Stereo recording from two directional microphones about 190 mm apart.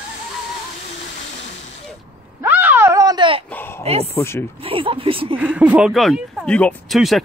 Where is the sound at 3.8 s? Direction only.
30° right (ahead or behind).